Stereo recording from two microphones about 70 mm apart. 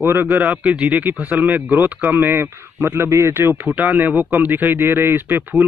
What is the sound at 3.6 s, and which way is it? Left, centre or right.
A man's voice, right.